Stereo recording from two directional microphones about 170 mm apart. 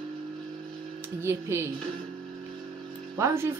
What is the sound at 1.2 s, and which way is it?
Speech, 15° right (ahead or behind).